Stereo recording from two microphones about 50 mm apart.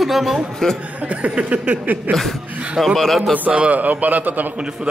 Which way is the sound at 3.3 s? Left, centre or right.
Right.